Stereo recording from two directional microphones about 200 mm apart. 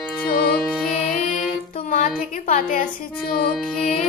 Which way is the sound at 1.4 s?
40° left (ahead or behind).